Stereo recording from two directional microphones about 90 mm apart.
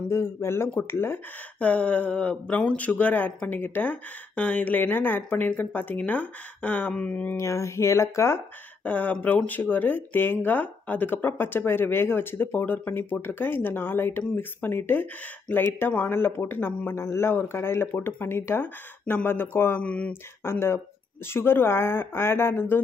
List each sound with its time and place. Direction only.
0.1 s speech: 30° left (ahead or behind)
1.6 s speech: 15° left (ahead or behind)
7.3 s speech: 35° left (ahead or behind)
8.8 s speech: 15° left (ahead or behind)
20.1 s speech: 25° left (ahead or behind)